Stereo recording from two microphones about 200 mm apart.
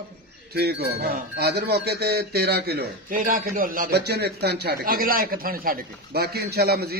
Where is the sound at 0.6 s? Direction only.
55° right (ahead or behind).